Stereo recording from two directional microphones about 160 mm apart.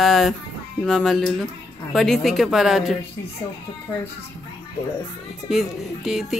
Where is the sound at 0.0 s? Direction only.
Centre (ahead or behind).